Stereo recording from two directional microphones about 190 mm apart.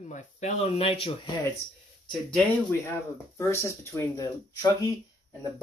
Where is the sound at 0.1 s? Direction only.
40° left (ahead or behind).